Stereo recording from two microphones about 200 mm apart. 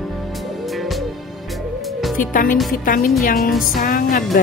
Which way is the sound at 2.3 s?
45° left (ahead or behind).